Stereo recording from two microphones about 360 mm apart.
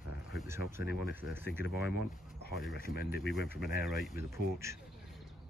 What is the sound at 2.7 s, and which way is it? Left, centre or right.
Speech, left.